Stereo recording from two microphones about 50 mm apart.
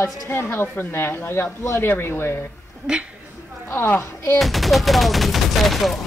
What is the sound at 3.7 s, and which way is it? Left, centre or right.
Speech, left.